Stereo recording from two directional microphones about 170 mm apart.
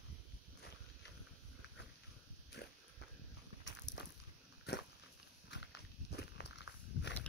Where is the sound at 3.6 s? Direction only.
90° left.